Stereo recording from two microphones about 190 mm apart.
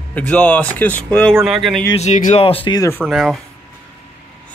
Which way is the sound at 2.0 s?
40° left (ahead or behind).